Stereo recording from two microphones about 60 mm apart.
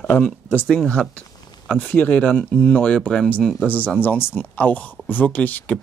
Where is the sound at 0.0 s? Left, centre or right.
Left.